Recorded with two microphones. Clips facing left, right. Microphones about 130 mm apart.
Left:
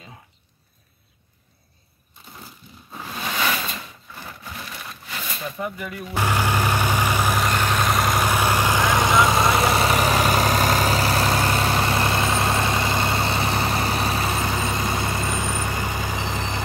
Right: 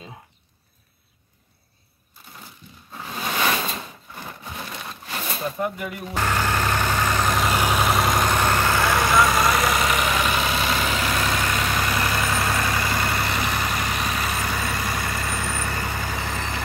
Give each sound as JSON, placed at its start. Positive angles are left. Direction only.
{"t": 4.2, "sound": "a sound", "side_deg": -25}
{"t": 5.6, "sound": "speech", "side_deg": -5}
{"t": 6.1, "sound": "vehicle", "side_deg": 10}
{"t": 7.5, "sound": "vehicle", "side_deg": -10}